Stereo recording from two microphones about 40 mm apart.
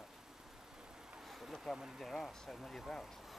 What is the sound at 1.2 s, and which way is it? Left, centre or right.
Vehicle, centre.